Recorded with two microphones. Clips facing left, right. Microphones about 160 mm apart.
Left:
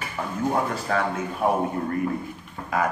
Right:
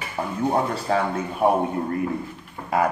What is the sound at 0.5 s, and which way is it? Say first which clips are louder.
A man's voice: right 3 dB; 30° right (ahead or behind).